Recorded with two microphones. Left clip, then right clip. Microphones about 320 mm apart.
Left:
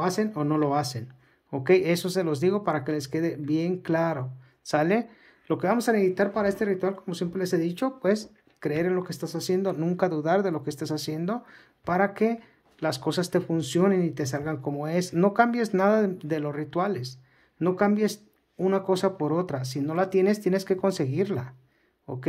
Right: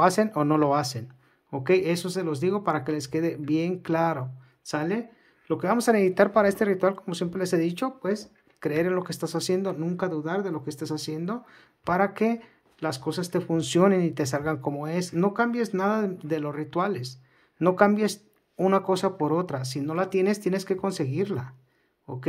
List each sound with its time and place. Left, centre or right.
0.0 s speech: centre